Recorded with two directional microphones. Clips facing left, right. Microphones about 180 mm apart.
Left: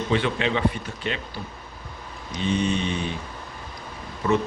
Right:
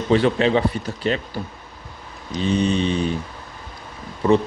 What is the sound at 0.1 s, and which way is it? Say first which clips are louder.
Speech: right 8 dB; 35° right (ahead or behind).